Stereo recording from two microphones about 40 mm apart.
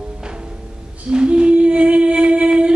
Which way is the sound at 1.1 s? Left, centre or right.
Right.